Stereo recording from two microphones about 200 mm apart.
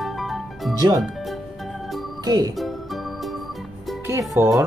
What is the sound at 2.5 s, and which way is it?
Music, centre (ahead or behind).